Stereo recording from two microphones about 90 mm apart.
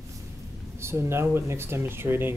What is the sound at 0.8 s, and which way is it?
Speech, 30° right (ahead or behind).